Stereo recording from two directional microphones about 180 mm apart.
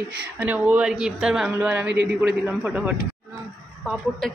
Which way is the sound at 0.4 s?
10° right (ahead or behind).